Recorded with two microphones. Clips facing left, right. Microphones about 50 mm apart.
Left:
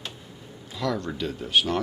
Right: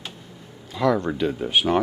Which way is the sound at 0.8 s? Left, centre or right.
Centre.